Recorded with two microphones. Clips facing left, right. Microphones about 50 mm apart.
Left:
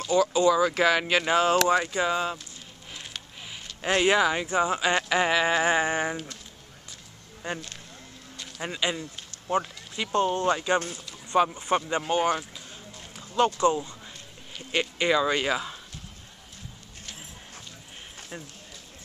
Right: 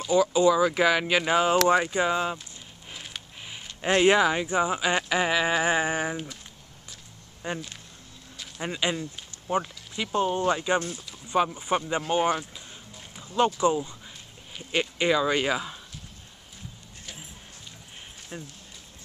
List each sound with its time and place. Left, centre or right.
0.0 s speech: centre
0.7 s speech: centre
2.9 s a sound: centre
4.2 s speech: centre
7.4 s speech: centre
8.4 s speech: centre
10.0 s speech: centre
11.1 s a sound: centre
11.5 s speech: centre
12.1 s a sound: centre
14.7 s speech: centre
18.3 s speech: centre